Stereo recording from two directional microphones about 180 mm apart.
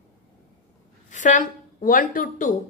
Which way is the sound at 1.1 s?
45° left (ahead or behind).